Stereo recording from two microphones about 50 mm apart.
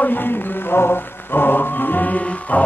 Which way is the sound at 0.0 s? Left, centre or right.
Left.